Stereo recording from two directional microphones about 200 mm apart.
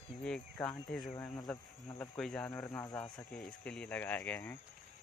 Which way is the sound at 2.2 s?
5° left (ahead or behind).